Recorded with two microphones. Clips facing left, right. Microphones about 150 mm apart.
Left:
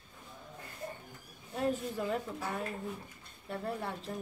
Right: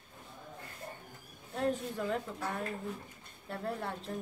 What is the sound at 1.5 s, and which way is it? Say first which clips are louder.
Speech: even; 5° left (ahead or behind).